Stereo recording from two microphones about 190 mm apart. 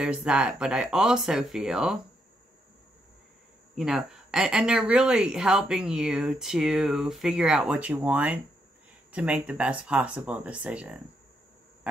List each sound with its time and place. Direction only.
0.0 s speech: 5° right (ahead or behind)
3.7 s speech: 5° right (ahead or behind)